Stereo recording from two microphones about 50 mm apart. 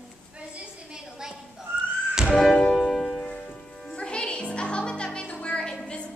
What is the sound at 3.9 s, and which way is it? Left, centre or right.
Music, centre.